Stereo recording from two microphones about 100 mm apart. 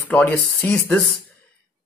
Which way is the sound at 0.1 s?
20° left (ahead or behind).